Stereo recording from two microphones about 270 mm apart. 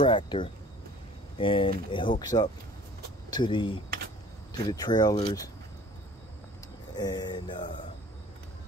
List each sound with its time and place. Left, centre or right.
0.0 s speech: centre
7.0 s speech: centre